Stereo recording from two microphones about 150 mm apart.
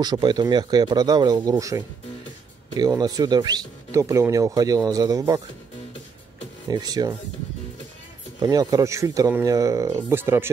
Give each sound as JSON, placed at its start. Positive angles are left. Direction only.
{"t": 0.0, "sound": "speech", "side_deg": -25}
{"t": 6.7, "sound": "speech", "side_deg": -25}
{"t": 8.4, "sound": "speech", "side_deg": -25}